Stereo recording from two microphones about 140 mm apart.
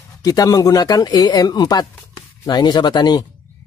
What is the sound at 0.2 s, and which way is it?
Speech, 25° left (ahead or behind).